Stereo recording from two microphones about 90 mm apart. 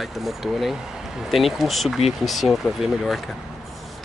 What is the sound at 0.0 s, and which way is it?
Speech, centre (ahead or behind).